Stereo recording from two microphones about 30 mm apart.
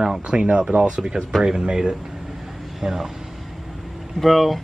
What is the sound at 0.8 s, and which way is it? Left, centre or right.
Speech, right.